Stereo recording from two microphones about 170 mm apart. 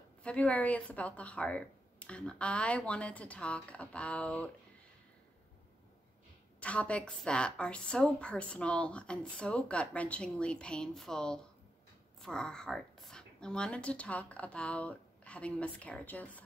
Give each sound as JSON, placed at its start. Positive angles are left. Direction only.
{"t": 0.2, "sound": "speech", "side_deg": 10}
{"t": 6.6, "sound": "a woman's voice", "side_deg": 5}